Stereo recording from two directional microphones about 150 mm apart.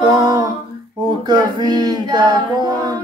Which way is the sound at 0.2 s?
30° right (ahead or behind).